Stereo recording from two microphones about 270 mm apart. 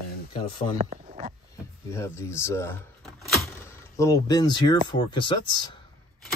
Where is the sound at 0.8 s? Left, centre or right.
Right.